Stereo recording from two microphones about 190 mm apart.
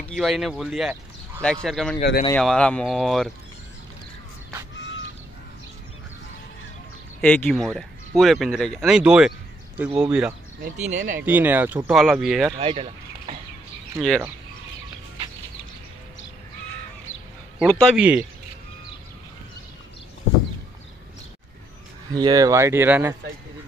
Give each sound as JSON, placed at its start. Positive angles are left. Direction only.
{"t": 0.1, "sound": "speech", "side_deg": 0}
{"t": 7.2, "sound": "speech", "side_deg": 5}
{"t": 10.6, "sound": "speech", "side_deg": -40}
{"t": 11.1, "sound": "speech", "side_deg": -10}
{"t": 12.5, "sound": "a sound", "side_deg": -30}
{"t": 13.9, "sound": "speech", "side_deg": 5}
{"t": 17.6, "sound": "speech", "side_deg": 5}
{"t": 17.9, "sound": "speech", "side_deg": -5}
{"t": 22.1, "sound": "speech", "side_deg": -20}